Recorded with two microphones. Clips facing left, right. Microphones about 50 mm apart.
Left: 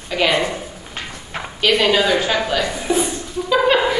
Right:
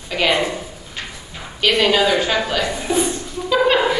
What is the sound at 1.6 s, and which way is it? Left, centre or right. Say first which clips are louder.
A woman's voice: even; centre.